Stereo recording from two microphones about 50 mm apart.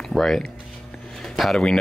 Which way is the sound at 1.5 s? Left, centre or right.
Centre.